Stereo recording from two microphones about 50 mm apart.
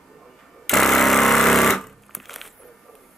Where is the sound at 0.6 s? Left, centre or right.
Centre.